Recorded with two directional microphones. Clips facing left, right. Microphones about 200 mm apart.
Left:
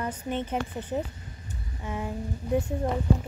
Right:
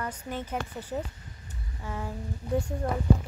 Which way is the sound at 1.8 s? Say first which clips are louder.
Left 3 dB; 15° left (ahead or behind).